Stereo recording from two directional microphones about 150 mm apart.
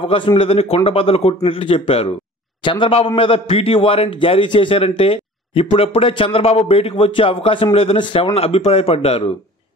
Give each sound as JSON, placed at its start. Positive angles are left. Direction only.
{"t": 0.1, "sound": "a man's voice", "side_deg": 35}